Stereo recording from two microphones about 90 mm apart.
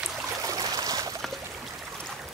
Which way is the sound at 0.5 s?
45° right (ahead or behind).